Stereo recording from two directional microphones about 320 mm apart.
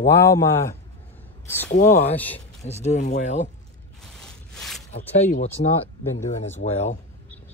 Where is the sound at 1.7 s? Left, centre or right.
Left.